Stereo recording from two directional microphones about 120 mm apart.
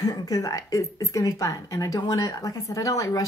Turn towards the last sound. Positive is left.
turn(degrees=30)  # may be behind; listen again after turning